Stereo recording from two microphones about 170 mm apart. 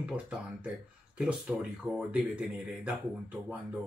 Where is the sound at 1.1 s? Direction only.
Centre (ahead or behind).